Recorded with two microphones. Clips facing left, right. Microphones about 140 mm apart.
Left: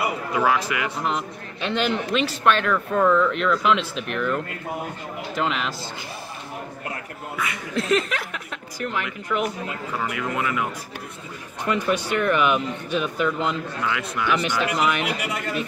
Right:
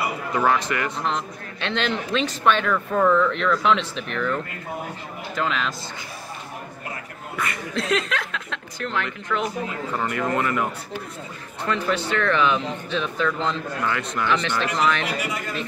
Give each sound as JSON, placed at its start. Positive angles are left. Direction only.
{"t": 0.3, "sound": "speech", "side_deg": 5}
{"t": 5.3, "sound": "a man's voice", "side_deg": 20}
{"t": 7.3, "sound": "speech", "side_deg": 0}
{"t": 15.0, "sound": "speech", "side_deg": 65}